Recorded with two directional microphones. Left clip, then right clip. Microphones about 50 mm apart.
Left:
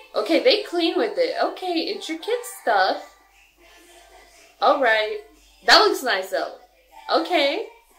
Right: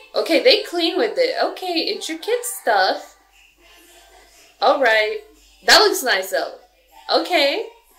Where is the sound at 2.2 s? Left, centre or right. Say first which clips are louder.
Right 4 dB; centre.